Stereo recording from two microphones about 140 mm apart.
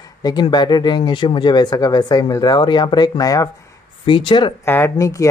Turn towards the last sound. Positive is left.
turn(degrees=20)  # may be behind; listen again after turning